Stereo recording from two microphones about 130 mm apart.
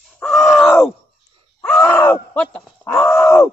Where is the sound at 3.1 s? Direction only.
15° left (ahead or behind).